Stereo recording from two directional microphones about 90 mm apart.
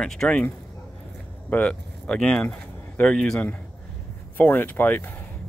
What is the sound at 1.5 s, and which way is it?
Speech, 10° left (ahead or behind).